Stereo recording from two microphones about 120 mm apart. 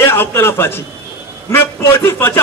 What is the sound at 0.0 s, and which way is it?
A man's voice, 20° left (ahead or behind).